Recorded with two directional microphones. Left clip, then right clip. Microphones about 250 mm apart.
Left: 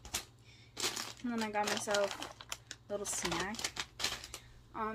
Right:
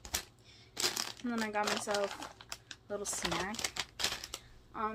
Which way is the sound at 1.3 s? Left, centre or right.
Centre.